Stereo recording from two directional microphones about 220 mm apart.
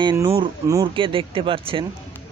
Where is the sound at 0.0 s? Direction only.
15° right (ahead or behind).